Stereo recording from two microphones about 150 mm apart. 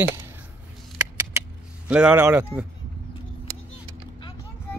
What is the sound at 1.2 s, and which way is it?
Cap gun, 10° right (ahead or behind).